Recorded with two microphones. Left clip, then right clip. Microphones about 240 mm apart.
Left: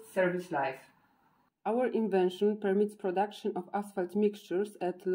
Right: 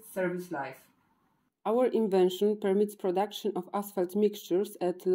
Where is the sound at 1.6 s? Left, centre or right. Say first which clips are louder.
Right 4 dB; right.